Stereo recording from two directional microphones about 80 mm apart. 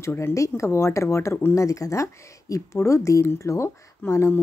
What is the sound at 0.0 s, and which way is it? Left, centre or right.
Speech, left.